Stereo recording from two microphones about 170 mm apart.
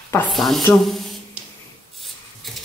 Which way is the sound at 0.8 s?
Centre (ahead or behind).